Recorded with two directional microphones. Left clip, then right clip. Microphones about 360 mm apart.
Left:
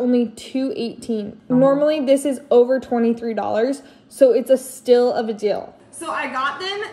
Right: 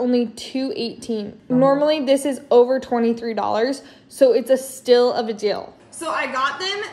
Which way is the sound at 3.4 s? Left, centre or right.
Left.